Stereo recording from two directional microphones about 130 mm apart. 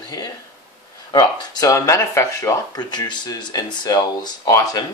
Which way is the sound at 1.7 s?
25° left (ahead or behind).